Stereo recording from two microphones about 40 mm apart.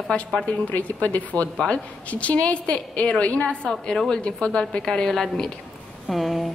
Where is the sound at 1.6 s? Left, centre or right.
Left.